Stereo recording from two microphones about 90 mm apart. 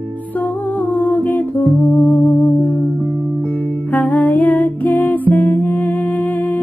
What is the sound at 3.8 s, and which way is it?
Music, 20° left (ahead or behind).